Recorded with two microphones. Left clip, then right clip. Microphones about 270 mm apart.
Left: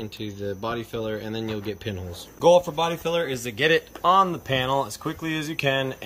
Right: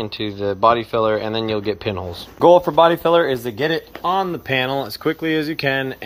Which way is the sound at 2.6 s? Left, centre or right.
Right.